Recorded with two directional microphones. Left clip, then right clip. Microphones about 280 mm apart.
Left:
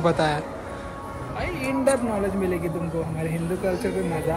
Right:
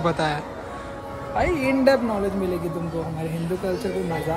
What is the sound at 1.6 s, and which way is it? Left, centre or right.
Speech, right.